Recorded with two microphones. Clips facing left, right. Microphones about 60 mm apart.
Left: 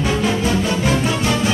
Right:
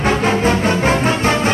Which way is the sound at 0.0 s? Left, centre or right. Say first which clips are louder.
Right 4 dB; right.